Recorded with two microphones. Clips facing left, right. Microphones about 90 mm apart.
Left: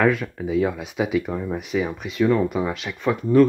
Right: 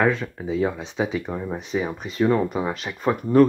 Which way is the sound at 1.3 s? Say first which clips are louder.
Left 2 dB; 15° right (ahead or behind).